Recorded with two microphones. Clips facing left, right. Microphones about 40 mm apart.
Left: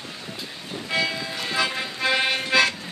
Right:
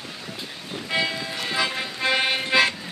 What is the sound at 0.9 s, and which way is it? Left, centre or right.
Music, centre.